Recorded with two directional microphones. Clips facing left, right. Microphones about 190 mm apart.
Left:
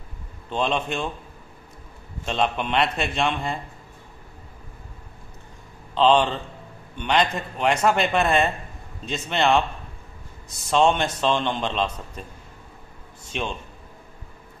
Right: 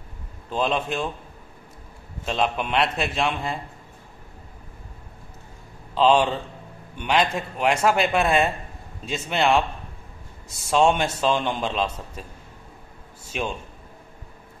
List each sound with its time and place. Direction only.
0.5 s a man's voice: 5° right (ahead or behind)
2.2 s a man's voice: 5° right (ahead or behind)
5.9 s a man's voice: 5° right (ahead or behind)
10.7 s a man's voice: 5° right (ahead or behind)